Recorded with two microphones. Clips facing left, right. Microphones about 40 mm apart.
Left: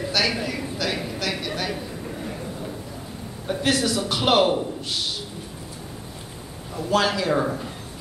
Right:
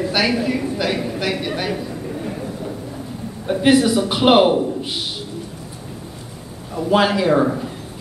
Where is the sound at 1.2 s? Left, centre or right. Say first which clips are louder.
Right 5 dB; centre.